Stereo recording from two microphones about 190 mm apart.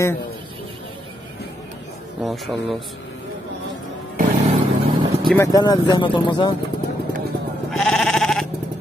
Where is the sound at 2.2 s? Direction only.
Centre (ahead or behind).